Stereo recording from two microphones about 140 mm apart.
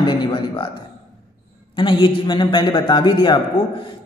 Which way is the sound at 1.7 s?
35° left (ahead or behind).